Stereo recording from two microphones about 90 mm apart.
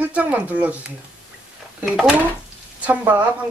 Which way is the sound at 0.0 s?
15° right (ahead or behind).